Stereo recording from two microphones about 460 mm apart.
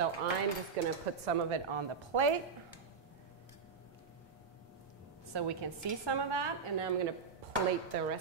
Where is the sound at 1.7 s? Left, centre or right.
Right.